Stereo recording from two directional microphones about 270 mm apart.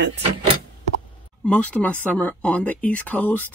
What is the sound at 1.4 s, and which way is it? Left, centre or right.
Speech, centre.